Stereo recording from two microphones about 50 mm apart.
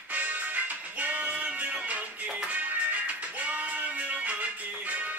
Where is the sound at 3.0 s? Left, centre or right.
Right.